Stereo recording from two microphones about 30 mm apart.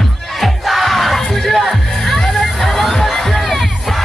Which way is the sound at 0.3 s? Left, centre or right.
Centre.